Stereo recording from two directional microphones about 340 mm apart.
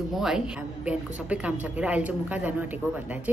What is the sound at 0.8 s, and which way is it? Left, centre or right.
A woman's voice, centre.